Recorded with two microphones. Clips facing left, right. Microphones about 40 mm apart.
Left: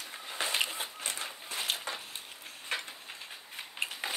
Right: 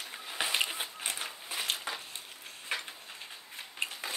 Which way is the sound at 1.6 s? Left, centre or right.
Centre.